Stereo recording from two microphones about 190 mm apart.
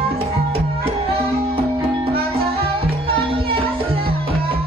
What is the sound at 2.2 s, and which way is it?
Music, 30° right (ahead or behind).